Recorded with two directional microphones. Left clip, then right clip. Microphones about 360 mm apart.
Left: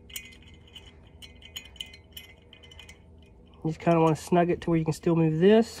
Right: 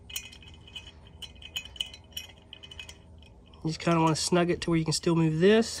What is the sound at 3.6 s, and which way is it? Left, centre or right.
Speech, centre.